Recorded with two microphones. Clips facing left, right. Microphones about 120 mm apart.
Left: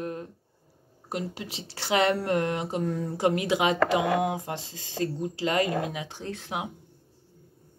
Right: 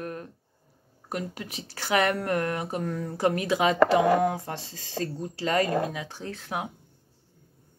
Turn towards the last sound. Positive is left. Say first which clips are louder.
# even
turn(degrees=20)  # may be behind; listen again after turning